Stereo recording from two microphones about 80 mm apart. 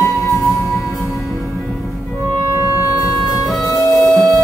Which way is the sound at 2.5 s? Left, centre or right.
Right.